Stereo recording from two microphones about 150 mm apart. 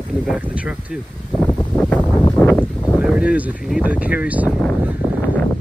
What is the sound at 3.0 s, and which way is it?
Speech, 10° right (ahead or behind).